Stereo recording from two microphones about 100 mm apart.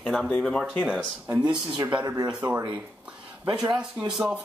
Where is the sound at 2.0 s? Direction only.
35° right (ahead or behind).